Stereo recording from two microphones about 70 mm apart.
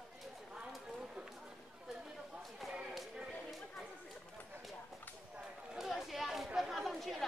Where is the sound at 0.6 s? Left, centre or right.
Centre.